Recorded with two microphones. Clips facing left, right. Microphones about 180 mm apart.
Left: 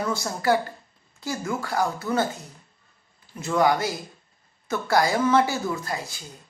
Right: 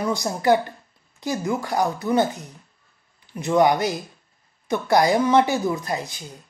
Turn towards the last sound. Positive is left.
turn(degrees=-20)  # may be behind; listen again after turning